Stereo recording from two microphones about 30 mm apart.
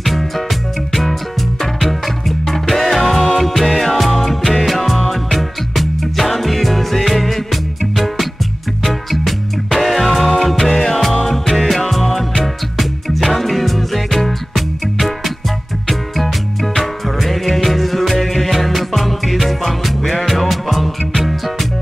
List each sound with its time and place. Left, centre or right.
0.0 s music: centre
1.8 s music: centre
4.4 s music: left
4.6 s music: centre
16.7 s music: centre